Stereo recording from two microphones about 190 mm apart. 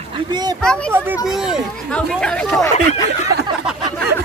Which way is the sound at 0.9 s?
10° right (ahead or behind).